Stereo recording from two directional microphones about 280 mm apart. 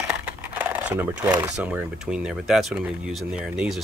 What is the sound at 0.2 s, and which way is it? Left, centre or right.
Speech, centre.